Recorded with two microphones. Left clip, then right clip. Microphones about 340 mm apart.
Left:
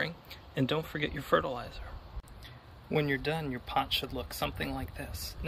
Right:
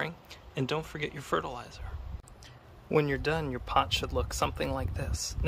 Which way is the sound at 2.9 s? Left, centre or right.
Centre.